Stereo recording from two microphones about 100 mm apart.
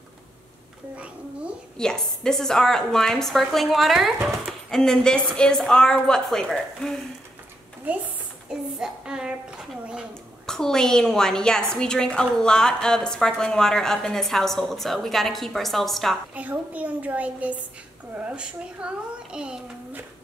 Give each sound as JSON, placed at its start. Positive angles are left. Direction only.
{"t": 0.9, "sound": "a child's voice", "side_deg": -15}
{"t": 1.8, "sound": "a woman's voice", "side_deg": 5}
{"t": 7.9, "sound": "a child's voice", "side_deg": -15}
{"t": 8.5, "sound": "a woman's voice", "side_deg": -5}
{"t": 10.4, "sound": "a woman's voice", "side_deg": 5}
{"t": 16.3, "sound": "a child's voice", "side_deg": -15}